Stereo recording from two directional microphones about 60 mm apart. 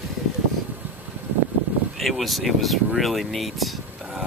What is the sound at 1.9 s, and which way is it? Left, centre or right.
Speech, centre.